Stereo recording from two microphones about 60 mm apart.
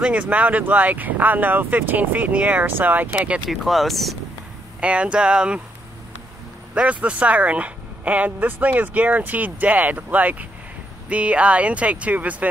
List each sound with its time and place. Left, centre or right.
0.0 s speech: right
3.4 s speech: centre
4.7 s speech: centre
6.7 s speech: right